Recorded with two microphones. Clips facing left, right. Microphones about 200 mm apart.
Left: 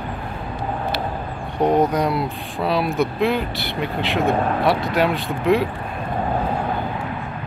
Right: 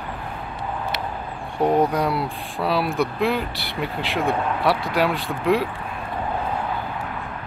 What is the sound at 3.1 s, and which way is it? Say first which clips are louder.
Speech: left 2 dB; 5° right (ahead or behind).